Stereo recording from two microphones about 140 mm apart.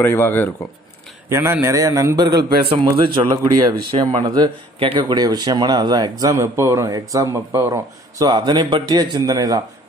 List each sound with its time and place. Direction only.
0.0 s speech: 15° left (ahead or behind)
1.3 s speech: 20° right (ahead or behind)
3.9 s speech: 40° right (ahead or behind)
4.2 s speech: 30° right (ahead or behind)